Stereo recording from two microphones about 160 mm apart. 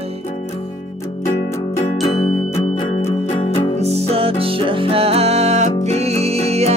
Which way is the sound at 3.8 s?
40° right (ahead or behind).